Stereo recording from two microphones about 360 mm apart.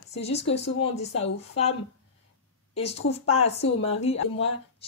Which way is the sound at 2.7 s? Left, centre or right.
Centre.